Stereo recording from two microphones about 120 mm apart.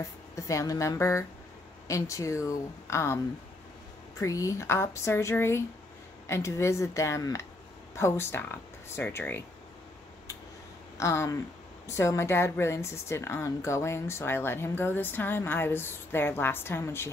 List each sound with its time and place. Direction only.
0.4 s a woman's voice: 25° left (ahead or behind)
4.2 s a woman's voice: 25° left (ahead or behind)
11.0 s a woman's voice: 25° left (ahead or behind)